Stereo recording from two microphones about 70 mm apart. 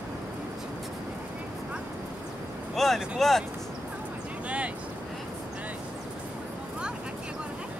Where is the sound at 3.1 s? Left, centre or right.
Centre.